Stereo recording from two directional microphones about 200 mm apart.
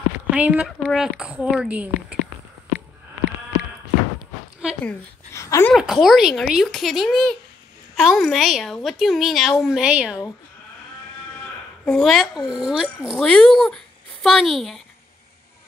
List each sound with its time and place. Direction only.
0.3 s a woman's voice: 5° right (ahead or behind)
4.8 s speech: 15° left (ahead or behind)
5.7 s a woman's voice: centre (ahead or behind)
11.8 s a woman's voice: centre (ahead or behind)